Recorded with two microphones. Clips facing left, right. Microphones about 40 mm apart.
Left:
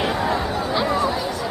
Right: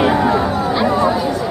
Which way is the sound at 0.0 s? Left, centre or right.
Right.